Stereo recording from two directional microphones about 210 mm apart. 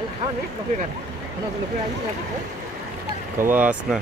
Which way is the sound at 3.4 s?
10° right (ahead or behind).